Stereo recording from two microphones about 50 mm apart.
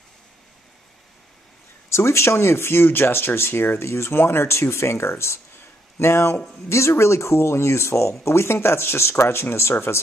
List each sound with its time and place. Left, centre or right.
1.9 s speech: left